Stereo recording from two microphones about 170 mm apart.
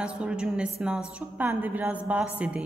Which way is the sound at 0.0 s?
5° right (ahead or behind).